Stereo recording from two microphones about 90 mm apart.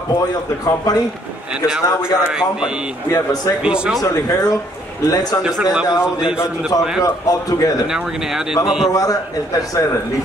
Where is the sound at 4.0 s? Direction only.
40° left (ahead or behind).